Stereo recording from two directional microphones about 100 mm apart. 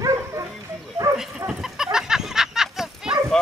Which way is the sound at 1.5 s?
5° right (ahead or behind).